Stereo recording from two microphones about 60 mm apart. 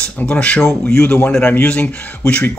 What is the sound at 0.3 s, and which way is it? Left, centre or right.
Speech, left.